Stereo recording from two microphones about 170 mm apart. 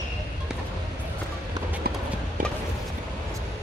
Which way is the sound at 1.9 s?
65° right (ahead or behind).